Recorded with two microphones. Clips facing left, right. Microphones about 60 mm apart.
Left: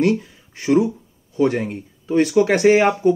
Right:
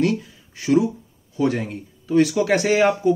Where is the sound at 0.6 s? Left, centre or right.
Left.